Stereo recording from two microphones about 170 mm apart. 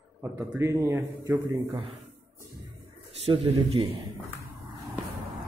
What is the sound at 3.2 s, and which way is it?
Speech, 35° right (ahead or behind).